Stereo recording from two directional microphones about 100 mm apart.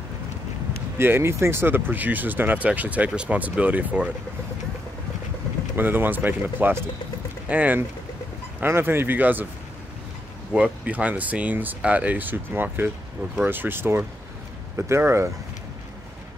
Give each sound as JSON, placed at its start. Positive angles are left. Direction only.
{"t": 0.9, "sound": "speech", "side_deg": -25}
{"t": 5.8, "sound": "speech", "side_deg": -20}
{"t": 10.5, "sound": "speech", "side_deg": -10}